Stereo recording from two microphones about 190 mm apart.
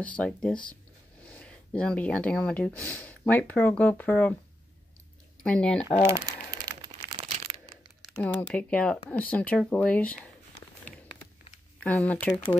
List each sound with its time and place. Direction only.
0.0 s speech: 5° left (ahead or behind)
5.4 s speech: 5° left (ahead or behind)
6.8 s a sound: 25° right (ahead or behind)
8.2 s speech: 10° left (ahead or behind)
10.9 s a sound: 5° left (ahead or behind)
11.8 s speech: 10° left (ahead or behind)